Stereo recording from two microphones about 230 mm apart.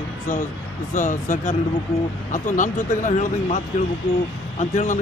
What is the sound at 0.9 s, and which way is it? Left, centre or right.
Speech, left.